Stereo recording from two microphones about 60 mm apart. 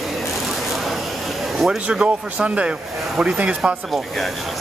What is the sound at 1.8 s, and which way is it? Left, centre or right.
A man's voice, centre.